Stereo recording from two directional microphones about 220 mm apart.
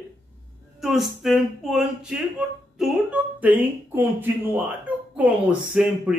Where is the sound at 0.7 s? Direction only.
Centre (ahead or behind).